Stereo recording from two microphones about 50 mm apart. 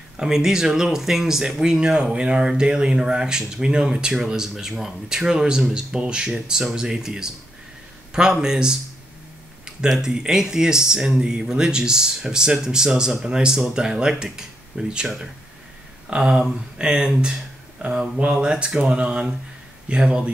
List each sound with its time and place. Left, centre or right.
0.2 s speech: centre
9.8 s speech: centre